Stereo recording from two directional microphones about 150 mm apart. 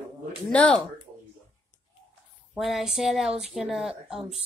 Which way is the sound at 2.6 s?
Centre (ahead or behind).